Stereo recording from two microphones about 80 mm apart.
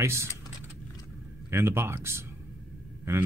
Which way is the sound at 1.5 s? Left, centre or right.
Right.